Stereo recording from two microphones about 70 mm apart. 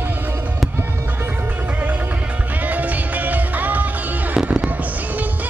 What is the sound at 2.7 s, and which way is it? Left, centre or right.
Music, right.